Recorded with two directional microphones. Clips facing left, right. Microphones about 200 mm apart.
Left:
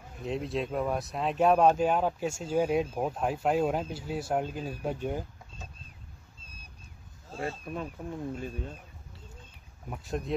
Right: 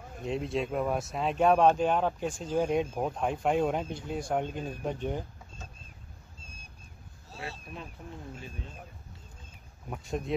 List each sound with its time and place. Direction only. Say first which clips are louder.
0.2 s speech: right 1 dB; centre (ahead or behind)
7.2 s speech: left 7 dB; 50° left (ahead or behind)
9.8 s speech: even; centre (ahead or behind)